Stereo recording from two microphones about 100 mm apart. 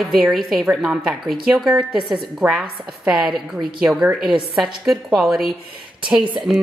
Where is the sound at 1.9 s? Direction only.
20° right (ahead or behind).